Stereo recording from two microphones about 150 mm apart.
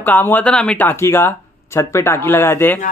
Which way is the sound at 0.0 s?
10° left (ahead or behind).